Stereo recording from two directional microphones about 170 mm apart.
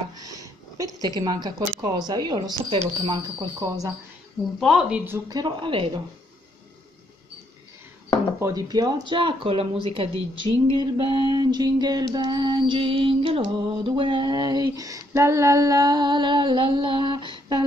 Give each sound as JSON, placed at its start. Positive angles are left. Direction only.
{"t": 0.1, "sound": "a woman's voice", "side_deg": -20}
{"t": 4.6, "sound": "speech", "side_deg": 0}
{"t": 5.3, "sound": "speech", "side_deg": -25}
{"t": 8.4, "sound": "speech", "side_deg": -20}